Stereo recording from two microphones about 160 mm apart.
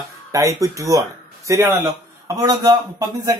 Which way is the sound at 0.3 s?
20° right (ahead or behind).